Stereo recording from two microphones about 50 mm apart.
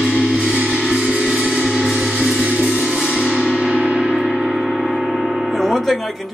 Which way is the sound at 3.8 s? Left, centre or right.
Centre.